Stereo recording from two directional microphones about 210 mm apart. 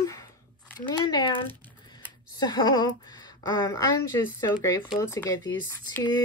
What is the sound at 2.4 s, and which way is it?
A woman's voice, 20° left (ahead or behind).